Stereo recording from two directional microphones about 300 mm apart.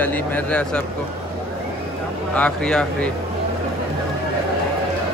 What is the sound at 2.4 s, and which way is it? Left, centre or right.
Speech, centre.